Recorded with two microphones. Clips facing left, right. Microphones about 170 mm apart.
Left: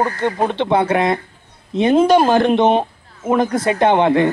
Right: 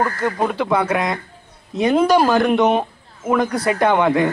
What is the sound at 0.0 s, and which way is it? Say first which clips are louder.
Speech: left 2 dB; 25° left (ahead or behind).